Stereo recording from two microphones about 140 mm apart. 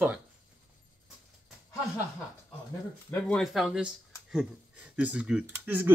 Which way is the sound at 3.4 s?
Centre (ahead or behind).